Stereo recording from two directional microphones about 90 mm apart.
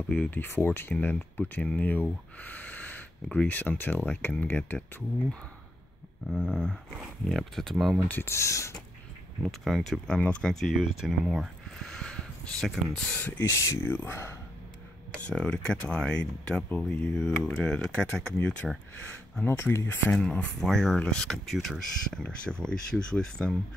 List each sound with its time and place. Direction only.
0.1 s speech: 20° left (ahead or behind)
6.3 s speech: 5° left (ahead or behind)
8.1 s speech: 25° left (ahead or behind)
9.4 s speech: centre (ahead or behind)
10.5 s speech: centre (ahead or behind)
11.9 s speech: 10° left (ahead or behind)
13.4 s speech: 30° left (ahead or behind)
15.1 s speech: 15° left (ahead or behind)
19.4 s speech: 25° left (ahead or behind)
20.1 s speech: 10° left (ahead or behind)